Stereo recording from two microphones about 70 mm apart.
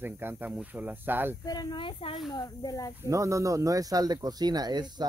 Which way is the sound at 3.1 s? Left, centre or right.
Right.